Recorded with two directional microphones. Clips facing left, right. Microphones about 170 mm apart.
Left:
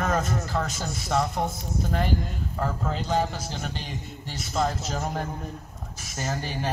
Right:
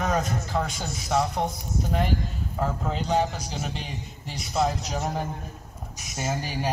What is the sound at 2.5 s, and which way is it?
Speech, 10° right (ahead or behind).